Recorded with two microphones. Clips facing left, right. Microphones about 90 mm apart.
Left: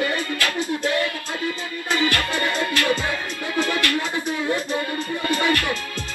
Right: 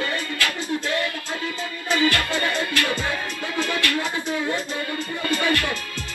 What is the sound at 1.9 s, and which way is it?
Music, 20° right (ahead or behind).